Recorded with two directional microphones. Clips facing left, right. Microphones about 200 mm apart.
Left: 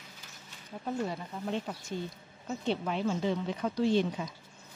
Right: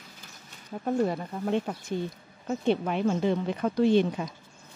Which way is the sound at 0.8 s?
50° right (ahead or behind).